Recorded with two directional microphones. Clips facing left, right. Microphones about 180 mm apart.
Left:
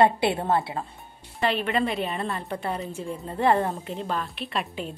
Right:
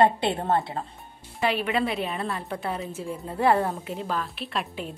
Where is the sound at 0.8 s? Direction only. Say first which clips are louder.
Even; 40° right (ahead or behind).